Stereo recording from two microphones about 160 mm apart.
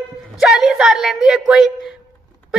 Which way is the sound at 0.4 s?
Centre (ahead or behind).